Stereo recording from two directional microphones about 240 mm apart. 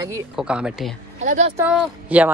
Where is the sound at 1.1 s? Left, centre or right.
Right.